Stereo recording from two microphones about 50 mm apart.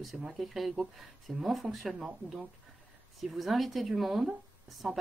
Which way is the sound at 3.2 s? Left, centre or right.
Centre.